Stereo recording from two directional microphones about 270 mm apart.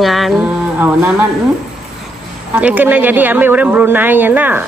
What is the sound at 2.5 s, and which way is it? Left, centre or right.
Speech, centre.